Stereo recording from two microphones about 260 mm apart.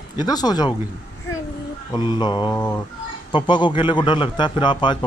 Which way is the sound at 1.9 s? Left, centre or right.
Centre.